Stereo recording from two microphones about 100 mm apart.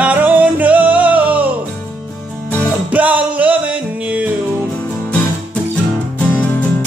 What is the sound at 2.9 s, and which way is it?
Music, 15° right (ahead or behind).